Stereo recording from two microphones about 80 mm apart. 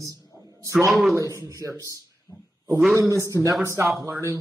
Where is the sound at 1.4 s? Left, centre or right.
Right.